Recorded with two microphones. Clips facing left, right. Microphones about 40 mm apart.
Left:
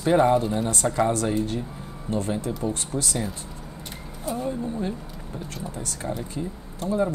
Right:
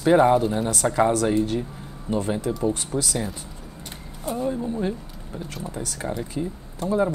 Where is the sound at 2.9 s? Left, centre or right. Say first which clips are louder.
Right 2 dB; centre.